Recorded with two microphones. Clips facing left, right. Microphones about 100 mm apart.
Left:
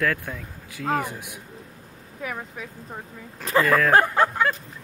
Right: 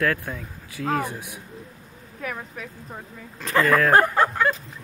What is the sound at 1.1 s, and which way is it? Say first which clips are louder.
Speech: right 1 dB; 55° left (ahead or behind).